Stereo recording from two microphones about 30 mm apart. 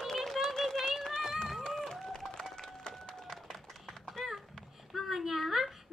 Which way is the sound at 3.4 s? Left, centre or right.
Centre.